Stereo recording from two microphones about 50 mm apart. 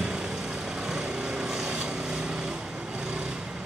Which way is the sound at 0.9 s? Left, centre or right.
Centre.